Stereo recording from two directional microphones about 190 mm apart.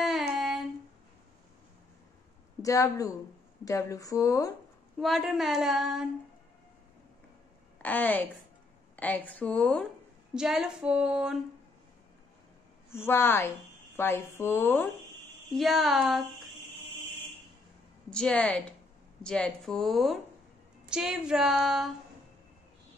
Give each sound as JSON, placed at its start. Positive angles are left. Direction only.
{"t": 0.3, "sound": "a sound", "side_deg": -5}
{"t": 2.6, "sound": "a woman's voice", "side_deg": 15}
{"t": 4.9, "sound": "speech", "side_deg": 0}
{"t": 7.8, "sound": "a woman's voice", "side_deg": 10}
{"t": 12.9, "sound": "a woman's voice", "side_deg": 10}
{"t": 15.5, "sound": "speech", "side_deg": 0}
{"t": 18.1, "sound": "speech", "side_deg": 5}